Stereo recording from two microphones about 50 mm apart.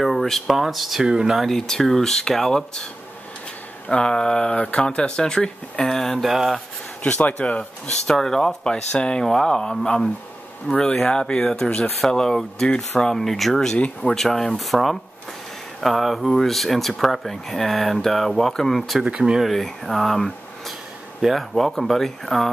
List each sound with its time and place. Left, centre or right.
0.0 s speech: centre
1.4 s speech: centre
3.9 s speech: centre
6.2 s speech: centre
7.0 s speech: left; by 13.7 s centre
13.7 s speech: left
14.1 s speech: centre
19.0 s speech: right
19.4 s speech: centre